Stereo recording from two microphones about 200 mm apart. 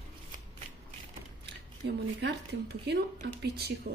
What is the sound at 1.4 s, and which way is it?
Speech, 55° right (ahead or behind).